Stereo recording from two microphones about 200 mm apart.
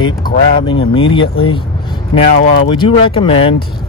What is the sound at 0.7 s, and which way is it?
Speech, 25° left (ahead or behind).